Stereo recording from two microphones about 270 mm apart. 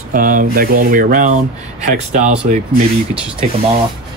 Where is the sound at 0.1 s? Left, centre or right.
Right.